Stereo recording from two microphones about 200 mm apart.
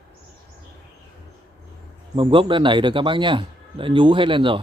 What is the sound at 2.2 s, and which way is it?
A man's voice, 25° right (ahead or behind).